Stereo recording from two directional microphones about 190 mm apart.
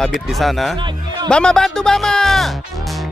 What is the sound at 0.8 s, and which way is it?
Music, 25° right (ahead or behind).